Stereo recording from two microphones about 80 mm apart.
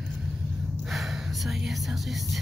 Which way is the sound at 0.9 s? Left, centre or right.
Centre.